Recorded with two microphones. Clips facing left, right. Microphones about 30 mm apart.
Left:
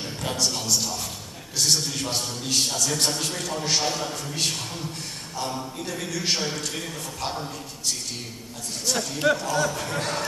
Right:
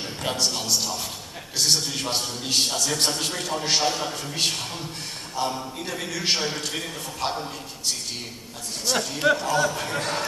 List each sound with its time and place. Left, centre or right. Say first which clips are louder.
0.0 s a man's voice: right 1 dB; centre